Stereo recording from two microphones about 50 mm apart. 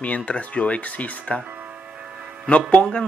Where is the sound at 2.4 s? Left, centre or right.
Left.